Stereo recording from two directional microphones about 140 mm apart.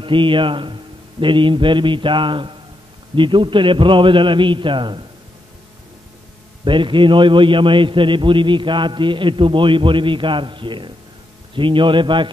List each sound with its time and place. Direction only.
0.0 s a man's voice: 35° right (ahead or behind)
6.6 s a man's voice: 35° right (ahead or behind)